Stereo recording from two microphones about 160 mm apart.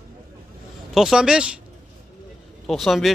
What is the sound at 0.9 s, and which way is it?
Speech, 5° right (ahead or behind).